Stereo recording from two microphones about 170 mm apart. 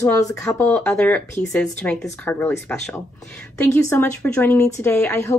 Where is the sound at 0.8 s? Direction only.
5° left (ahead or behind).